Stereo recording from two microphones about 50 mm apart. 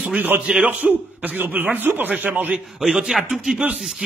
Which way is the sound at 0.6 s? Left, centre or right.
Right.